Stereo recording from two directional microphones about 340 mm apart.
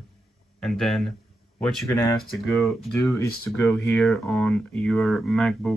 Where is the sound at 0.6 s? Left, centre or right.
Centre.